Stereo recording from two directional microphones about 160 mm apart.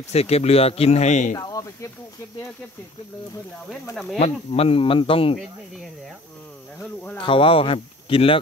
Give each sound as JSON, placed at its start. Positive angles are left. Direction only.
{"t": 0.1, "sound": "speech", "side_deg": 40}
{"t": 1.3, "sound": "speech", "side_deg": 25}
{"t": 3.9, "sound": "speech", "side_deg": 0}
{"t": 4.2, "sound": "speech", "side_deg": 40}
{"t": 6.8, "sound": "speech", "side_deg": 10}
{"t": 7.2, "sound": "speech", "side_deg": 35}